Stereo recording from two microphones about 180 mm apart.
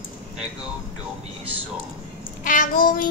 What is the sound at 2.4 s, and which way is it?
Child singing, 50° left (ahead or behind).